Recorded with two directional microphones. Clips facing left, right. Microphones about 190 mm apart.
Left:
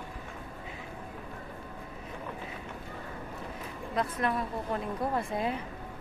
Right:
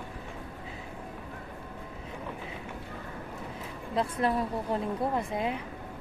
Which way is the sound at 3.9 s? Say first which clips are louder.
Right 3 dB; 30° right (ahead or behind).